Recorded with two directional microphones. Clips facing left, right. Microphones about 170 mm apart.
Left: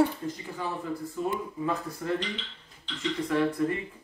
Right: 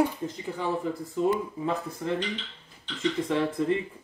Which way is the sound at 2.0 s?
25° right (ahead or behind).